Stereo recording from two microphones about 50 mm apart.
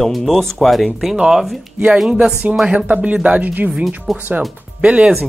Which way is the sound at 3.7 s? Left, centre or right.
Centre.